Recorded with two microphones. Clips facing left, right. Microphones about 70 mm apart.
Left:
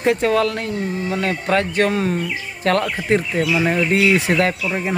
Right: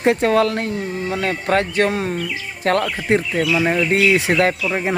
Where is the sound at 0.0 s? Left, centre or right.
Right.